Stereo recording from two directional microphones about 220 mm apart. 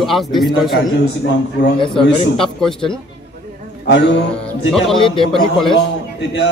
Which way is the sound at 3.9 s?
55° left (ahead or behind).